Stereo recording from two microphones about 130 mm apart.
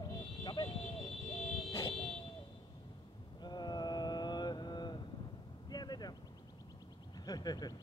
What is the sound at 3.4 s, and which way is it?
Mantra, 35° left (ahead or behind).